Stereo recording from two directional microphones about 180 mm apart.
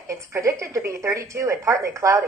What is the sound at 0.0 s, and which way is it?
A woman's voice, 15° right (ahead or behind).